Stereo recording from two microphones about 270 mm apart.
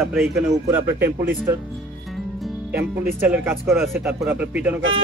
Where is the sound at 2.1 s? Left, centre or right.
Centre.